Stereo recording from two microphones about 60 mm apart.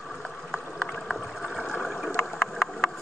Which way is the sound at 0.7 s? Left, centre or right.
Left.